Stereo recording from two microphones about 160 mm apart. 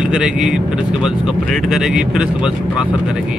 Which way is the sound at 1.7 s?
5° right (ahead or behind).